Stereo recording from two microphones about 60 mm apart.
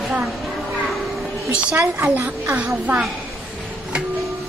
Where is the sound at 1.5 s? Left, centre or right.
Centre.